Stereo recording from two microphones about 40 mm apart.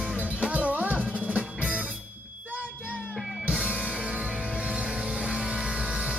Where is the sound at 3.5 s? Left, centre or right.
Right.